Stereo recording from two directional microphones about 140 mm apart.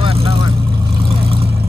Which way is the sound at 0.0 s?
40° right (ahead or behind).